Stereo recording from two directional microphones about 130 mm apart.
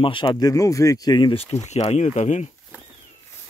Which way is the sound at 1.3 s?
55° left (ahead or behind).